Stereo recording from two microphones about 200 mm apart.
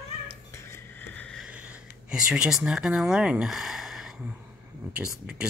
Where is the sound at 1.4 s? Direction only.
5° right (ahead or behind).